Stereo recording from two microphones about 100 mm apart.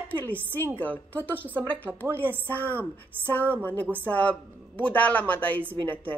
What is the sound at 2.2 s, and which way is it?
Speech, 20° right (ahead or behind).